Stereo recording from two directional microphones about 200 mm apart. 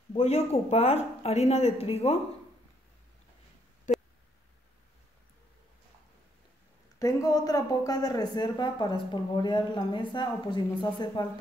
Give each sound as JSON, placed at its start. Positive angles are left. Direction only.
{"t": 0.2, "sound": "speech", "side_deg": 35}
{"t": 3.9, "sound": "a sound", "side_deg": 40}
{"t": 7.0, "sound": "speech", "side_deg": 20}